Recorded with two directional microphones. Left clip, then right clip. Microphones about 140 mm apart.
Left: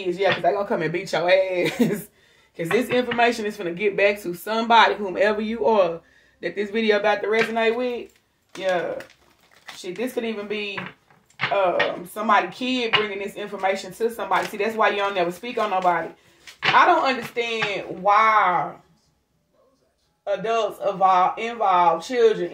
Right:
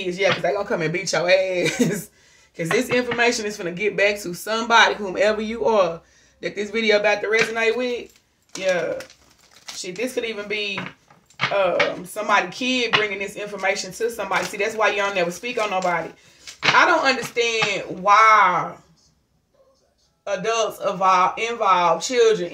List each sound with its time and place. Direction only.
0.0 s speech: 15° right (ahead or behind)
9.9 s speech: 20° right (ahead or behind)
17.0 s speech: 25° right (ahead or behind)
20.2 s speech: 25° right (ahead or behind)